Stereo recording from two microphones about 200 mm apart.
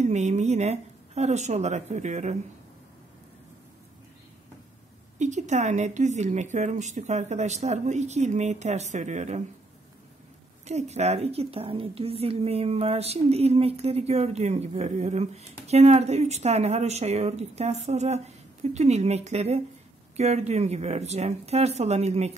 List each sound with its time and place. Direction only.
0.0 s a woman's voice: 35° right (ahead or behind)
5.2 s a woman's voice: 35° right (ahead or behind)
10.6 s a woman's voice: 35° right (ahead or behind)